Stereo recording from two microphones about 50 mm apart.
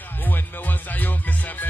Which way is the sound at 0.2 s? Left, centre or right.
Left.